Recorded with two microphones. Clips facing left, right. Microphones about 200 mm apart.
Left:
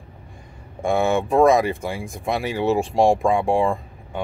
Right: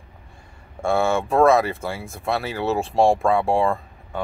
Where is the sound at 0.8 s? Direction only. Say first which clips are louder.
Left 1 dB; 15° left (ahead or behind).